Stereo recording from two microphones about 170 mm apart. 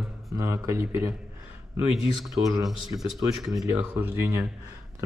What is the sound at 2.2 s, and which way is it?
Speech, centre (ahead or behind).